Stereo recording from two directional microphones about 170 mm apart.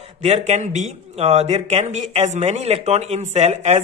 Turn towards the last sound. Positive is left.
turn(degrees=-40)  # may be behind; listen again after turning